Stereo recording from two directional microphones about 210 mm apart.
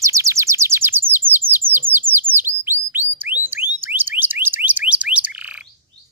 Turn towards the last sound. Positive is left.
turn(degrees=-5)  # may be behind; listen again after turning